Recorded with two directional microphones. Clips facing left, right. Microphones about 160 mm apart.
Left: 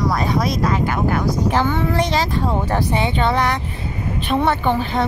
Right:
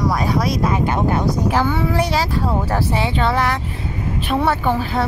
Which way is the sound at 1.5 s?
10° right (ahead or behind).